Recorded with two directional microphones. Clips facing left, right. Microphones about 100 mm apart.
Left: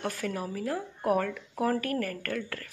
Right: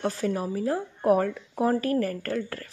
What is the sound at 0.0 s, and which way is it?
Speech, 25° right (ahead or behind).